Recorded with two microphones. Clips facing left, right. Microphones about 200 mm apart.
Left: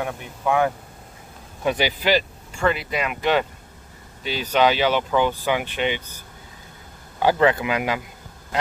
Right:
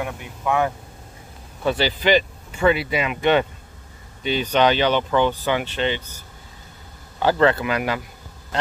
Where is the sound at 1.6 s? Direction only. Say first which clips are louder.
Right 1 dB; 15° left (ahead or behind).